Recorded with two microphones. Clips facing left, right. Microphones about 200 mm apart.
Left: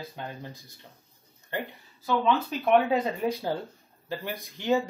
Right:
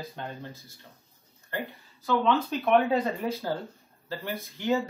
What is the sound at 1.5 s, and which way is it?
Speech, 20° left (ahead or behind).